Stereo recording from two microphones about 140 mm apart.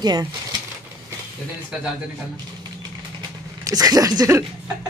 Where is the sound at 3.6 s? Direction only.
25° right (ahead or behind).